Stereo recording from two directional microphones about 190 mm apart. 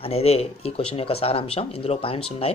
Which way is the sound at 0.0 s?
30° left (ahead or behind).